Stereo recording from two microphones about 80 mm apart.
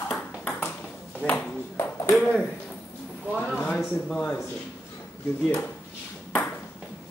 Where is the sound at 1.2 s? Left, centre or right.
Left.